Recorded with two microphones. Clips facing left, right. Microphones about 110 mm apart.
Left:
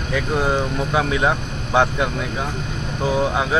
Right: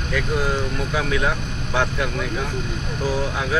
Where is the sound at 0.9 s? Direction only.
25° left (ahead or behind).